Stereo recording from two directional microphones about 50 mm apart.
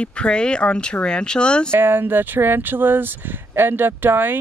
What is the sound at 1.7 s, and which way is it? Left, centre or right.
Speech, right.